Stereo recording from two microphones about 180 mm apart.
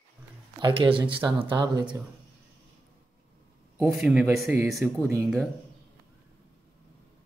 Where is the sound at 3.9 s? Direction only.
Centre (ahead or behind).